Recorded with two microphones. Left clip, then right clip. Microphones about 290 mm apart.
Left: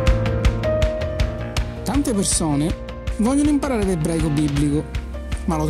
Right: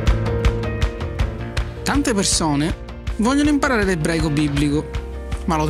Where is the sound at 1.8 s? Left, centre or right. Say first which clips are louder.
Right 3 dB; right.